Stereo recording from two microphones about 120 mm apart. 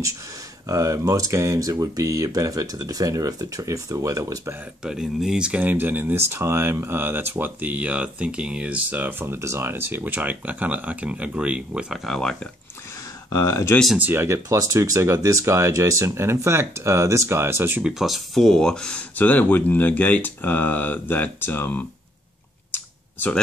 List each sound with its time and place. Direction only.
0.7 s speech: 25° right (ahead or behind)
4.8 s speech: 5° right (ahead or behind)
13.3 s speech: 25° left (ahead or behind)
13.9 s speech: 15° right (ahead or behind)
17.8 s speech: centre (ahead or behind); by 21.8 s 15° left (ahead or behind)
22.7 s clicking: 15° left (ahead or behind)